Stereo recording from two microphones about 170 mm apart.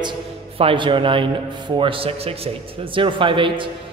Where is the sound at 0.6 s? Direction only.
30° right (ahead or behind).